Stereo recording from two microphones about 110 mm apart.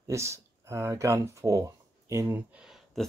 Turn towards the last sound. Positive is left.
turn(degrees=0)  # may be behind; listen again after turning